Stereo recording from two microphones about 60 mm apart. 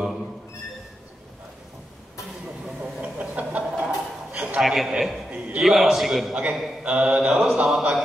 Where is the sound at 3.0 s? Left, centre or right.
Right.